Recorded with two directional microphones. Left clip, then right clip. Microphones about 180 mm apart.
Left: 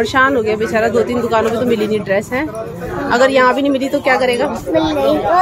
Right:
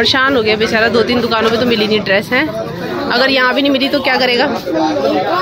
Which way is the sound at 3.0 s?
15° left (ahead or behind).